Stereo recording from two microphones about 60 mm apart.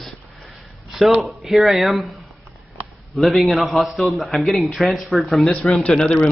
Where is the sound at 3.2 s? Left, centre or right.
Centre.